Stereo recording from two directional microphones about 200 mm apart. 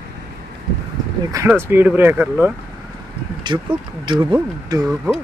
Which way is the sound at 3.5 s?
15° right (ahead or behind).